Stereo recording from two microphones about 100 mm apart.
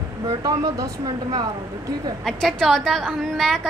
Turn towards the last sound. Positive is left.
turn(degrees=5)  # may be behind; listen again after turning